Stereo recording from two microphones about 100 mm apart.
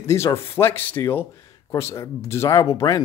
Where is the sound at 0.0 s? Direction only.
30° left (ahead or behind).